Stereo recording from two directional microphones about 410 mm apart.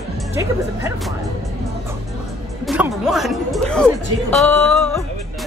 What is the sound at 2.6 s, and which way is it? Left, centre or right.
Speech, centre.